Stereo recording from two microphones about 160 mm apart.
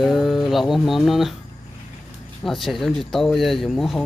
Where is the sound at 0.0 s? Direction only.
Centre (ahead or behind).